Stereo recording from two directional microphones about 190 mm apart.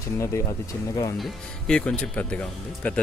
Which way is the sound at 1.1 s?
Centre (ahead or behind).